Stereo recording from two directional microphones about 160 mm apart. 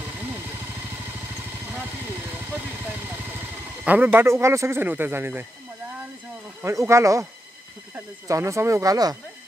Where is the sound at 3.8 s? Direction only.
10° right (ahead or behind).